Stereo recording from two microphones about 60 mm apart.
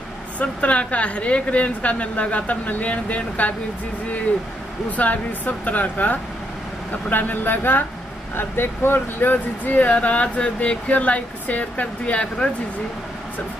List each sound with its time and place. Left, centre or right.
0.4 s speech: left
4.9 s speech: left